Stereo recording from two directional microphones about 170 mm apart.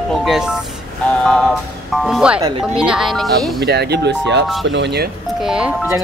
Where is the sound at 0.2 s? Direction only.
5° right (ahead or behind).